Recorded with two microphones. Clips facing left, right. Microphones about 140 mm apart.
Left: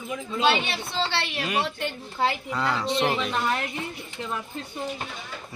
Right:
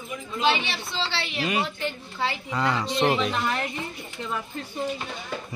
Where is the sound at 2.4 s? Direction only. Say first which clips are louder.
Even; centre (ahead or behind).